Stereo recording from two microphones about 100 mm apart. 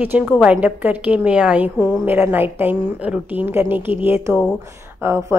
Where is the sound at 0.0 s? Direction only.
20° right (ahead or behind).